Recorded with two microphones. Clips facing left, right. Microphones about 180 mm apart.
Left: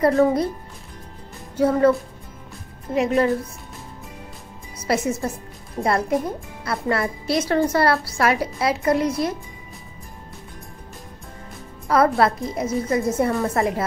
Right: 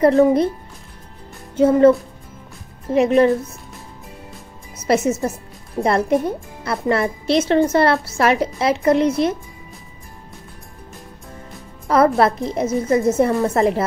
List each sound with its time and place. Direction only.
0.0 s a woman's voice: 25° right (ahead or behind)
1.6 s a woman's voice: 20° right (ahead or behind)
2.9 s a woman's voice: 20° right (ahead or behind)
4.8 s a woman's voice: 25° right (ahead or behind)
12.2 s a woman's voice: 25° right (ahead or behind)